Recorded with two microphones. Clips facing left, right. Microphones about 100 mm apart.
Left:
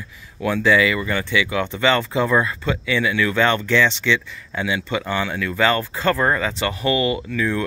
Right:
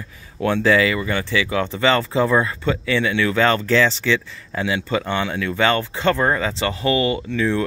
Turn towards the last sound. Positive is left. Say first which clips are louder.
# right 2 dB
turn(degrees=-30)  # may be behind; listen again after turning